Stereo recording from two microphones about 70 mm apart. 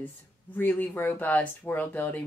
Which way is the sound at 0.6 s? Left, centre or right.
Left.